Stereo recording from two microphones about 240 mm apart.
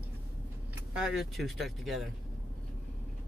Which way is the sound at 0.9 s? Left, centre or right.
Centre.